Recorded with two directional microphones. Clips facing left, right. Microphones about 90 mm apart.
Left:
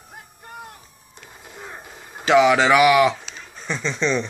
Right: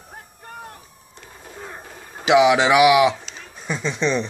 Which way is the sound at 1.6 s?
15° left (ahead or behind).